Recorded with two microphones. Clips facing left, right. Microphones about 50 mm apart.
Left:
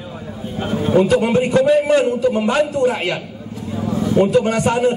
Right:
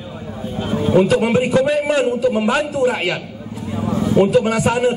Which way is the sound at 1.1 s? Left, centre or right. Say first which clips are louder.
Even; centre.